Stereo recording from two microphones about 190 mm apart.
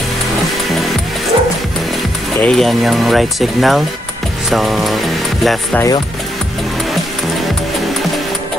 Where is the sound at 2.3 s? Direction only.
5° left (ahead or behind).